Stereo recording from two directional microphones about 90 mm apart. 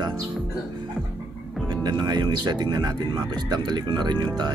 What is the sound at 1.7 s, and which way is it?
Speech, 50° right (ahead or behind).